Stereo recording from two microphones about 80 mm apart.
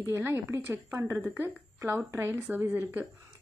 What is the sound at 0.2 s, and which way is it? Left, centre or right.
Speech, right.